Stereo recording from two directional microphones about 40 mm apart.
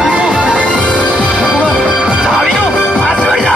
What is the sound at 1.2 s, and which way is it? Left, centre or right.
Music, right.